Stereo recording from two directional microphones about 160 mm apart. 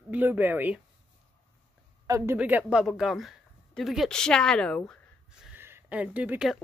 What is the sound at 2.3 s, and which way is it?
Speech, 10° right (ahead or behind).